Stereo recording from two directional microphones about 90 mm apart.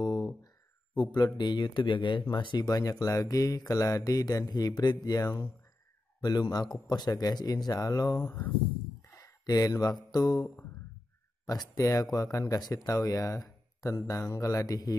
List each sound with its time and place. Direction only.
0.0 s a sound: 55° left (ahead or behind)
0.9 s speech: 50° left (ahead or behind)
9.2 s speech: 45° left (ahead or behind)